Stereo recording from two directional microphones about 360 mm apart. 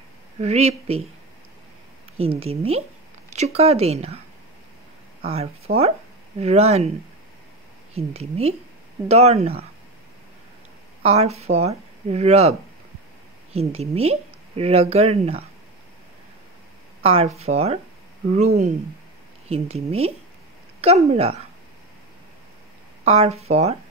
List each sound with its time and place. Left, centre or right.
0.4 s speech: centre
2.1 s speech: centre
5.2 s speech: centre
7.9 s speech: centre
11.0 s speech: centre
17.0 s speech: centre
23.0 s speech: centre